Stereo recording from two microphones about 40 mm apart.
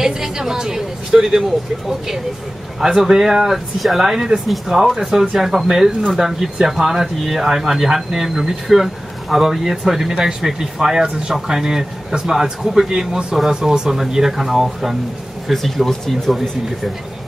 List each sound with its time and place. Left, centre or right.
0.0 s a woman's voice: centre
2.8 s speech: centre
15.4 s speech: centre